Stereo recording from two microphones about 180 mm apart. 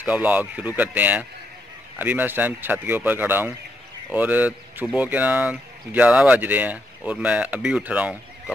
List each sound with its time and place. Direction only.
0.0 s a man's voice: 5° right (ahead or behind)